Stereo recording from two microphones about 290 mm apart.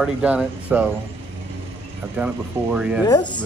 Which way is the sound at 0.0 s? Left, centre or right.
Centre.